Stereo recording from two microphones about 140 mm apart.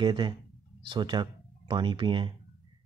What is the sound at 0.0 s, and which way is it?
Speech, 35° right (ahead or behind).